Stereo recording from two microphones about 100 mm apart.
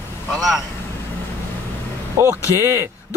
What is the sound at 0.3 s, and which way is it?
Speech, centre (ahead or behind).